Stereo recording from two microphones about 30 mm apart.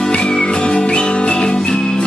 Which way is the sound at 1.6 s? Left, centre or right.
Centre.